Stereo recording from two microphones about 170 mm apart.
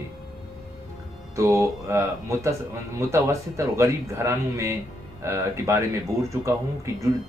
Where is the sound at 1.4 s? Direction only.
15° right (ahead or behind).